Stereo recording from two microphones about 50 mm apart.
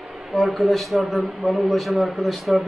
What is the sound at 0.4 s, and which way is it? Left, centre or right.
A man's voice, centre.